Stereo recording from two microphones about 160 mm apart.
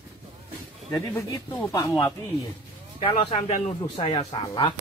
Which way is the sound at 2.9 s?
40° left (ahead or behind).